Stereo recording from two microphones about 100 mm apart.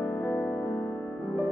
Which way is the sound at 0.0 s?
20° left (ahead or behind).